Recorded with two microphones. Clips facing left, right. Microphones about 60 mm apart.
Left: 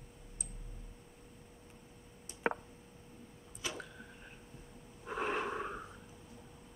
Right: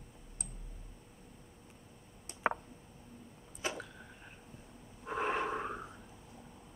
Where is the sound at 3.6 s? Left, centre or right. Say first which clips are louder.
Right 4 dB; right.